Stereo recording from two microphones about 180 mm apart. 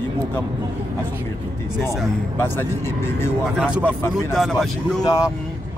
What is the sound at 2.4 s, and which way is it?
Speech, 10° left (ahead or behind).